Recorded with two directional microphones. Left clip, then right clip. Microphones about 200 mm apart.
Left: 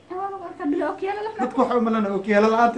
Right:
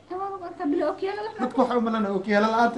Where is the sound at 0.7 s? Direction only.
5° left (ahead or behind).